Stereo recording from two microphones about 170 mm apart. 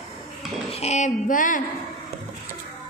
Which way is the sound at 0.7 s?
40° left (ahead or behind).